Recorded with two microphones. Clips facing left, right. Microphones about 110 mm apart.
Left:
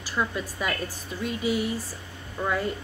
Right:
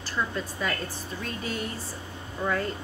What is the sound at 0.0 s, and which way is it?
A woman's voice, 10° left (ahead or behind).